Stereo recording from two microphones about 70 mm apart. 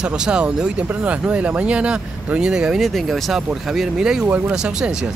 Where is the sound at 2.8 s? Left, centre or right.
Centre.